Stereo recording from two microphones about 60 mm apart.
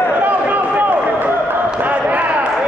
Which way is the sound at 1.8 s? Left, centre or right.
Right.